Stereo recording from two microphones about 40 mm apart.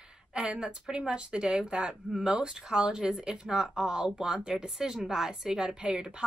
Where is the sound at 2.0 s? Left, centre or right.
Centre.